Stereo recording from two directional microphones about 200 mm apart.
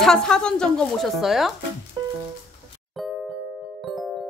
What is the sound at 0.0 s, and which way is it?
A woman's voice, 5° left (ahead or behind).